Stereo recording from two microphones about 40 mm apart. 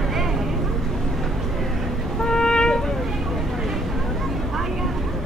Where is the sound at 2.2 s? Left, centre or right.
Centre.